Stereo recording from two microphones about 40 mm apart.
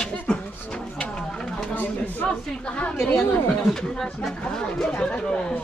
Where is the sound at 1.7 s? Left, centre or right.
Left.